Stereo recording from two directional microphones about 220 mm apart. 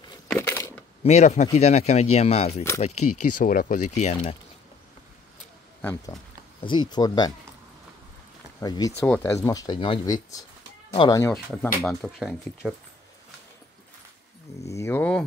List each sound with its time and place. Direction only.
0.3 s crushing: 10° left (ahead or behind)
1.0 s speech: 30° left (ahead or behind)
3.1 s speech: 90° left
3.3 s speech: 40° left (ahead or behind)
5.8 s speech: 10° left (ahead or behind)
6.6 s speech: 20° left (ahead or behind)
8.5 s speech: 15° left (ahead or behind)
11.8 s speech: centre (ahead or behind)
14.6 s speech: 15° left (ahead or behind)